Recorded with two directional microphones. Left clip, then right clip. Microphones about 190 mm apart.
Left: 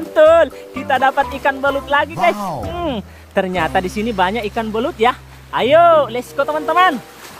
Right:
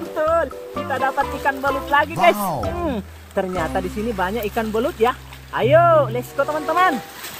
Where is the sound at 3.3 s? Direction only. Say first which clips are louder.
Left 5 dB; 15° left (ahead or behind).